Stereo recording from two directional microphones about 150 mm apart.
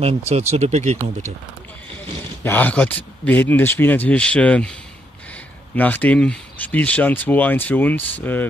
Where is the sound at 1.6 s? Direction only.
10° left (ahead or behind).